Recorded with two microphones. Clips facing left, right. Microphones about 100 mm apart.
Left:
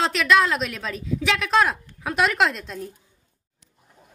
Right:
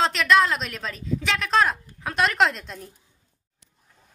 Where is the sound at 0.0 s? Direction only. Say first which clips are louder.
Even; centre (ahead or behind).